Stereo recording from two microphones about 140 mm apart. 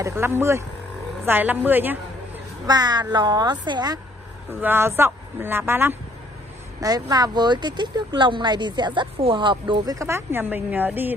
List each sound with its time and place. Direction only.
0.0 s speech: 20° right (ahead or behind)
2.6 s speech: 30° right (ahead or behind)
4.6 s speech: 15° right (ahead or behind)
6.8 s speech: 25° right (ahead or behind)